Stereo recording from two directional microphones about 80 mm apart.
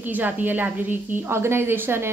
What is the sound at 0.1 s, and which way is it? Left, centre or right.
A woman's voice, right.